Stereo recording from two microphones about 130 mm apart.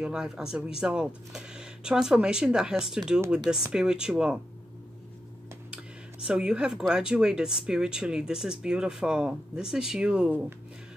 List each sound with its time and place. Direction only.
0.0 s speech: 5° right (ahead or behind)
5.7 s a sound: 10° right (ahead or behind)
6.9 s speech: 5° right (ahead or behind)